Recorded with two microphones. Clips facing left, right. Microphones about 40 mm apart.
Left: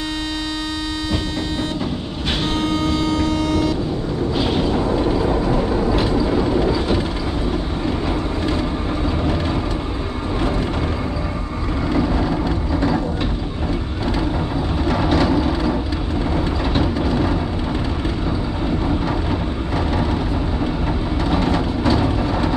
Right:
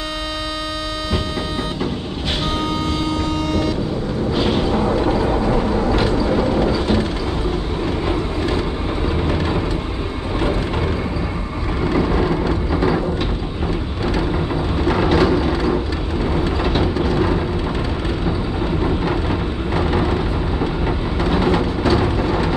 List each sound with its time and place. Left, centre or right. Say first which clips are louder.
2.5 s vehicle: left 4 dB; centre
11.9 s vehicle: right 1 dB; centre
14.9 s a sound: right 2 dB; centre
19.7 s vehicle: right 3 dB; centre